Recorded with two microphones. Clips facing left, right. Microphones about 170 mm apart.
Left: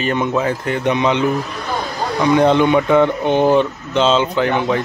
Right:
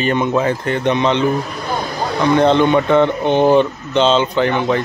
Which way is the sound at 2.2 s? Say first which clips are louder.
Even; 10° left (ahead or behind).